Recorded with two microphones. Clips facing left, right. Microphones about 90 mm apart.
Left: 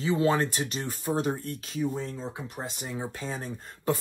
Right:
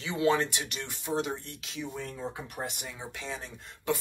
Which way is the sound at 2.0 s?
20° left (ahead or behind).